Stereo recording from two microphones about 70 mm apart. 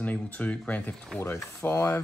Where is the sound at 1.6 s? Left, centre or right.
Left.